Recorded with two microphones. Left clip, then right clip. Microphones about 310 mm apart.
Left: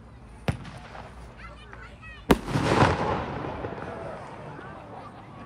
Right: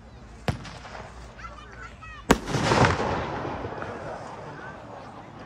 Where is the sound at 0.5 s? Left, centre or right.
Centre.